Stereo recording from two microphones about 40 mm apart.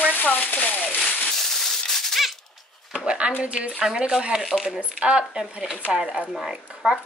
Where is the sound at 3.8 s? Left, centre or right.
Centre.